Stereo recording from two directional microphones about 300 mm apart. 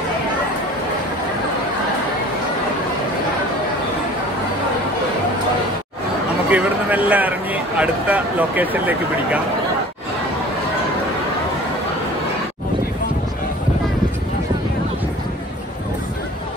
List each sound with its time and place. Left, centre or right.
6.5 s speech: centre